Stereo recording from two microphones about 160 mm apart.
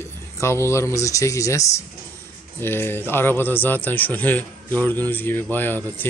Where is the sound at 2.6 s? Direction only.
15° left (ahead or behind).